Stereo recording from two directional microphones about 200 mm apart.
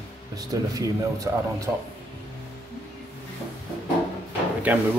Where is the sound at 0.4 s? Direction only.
15° right (ahead or behind).